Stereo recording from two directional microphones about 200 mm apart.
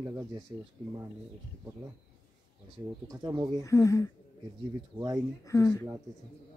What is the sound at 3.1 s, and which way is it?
Speech, 20° right (ahead or behind).